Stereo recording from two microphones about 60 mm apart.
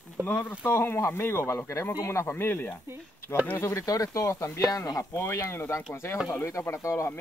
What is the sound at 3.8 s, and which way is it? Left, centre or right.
Speech, left.